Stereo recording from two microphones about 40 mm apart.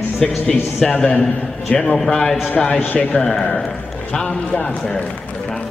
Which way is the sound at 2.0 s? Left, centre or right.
Centre.